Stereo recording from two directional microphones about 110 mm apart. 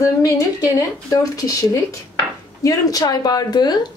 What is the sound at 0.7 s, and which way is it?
Speech, 35° left (ahead or behind).